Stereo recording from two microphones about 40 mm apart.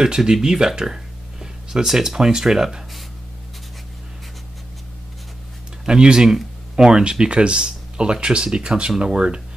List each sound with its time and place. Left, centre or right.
0.0 s speech: centre
5.9 s speech: right